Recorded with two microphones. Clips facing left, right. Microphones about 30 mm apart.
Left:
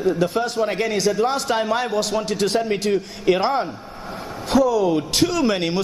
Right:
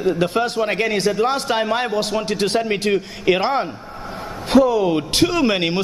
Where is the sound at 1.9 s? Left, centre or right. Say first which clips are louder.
Right 1 dB; right.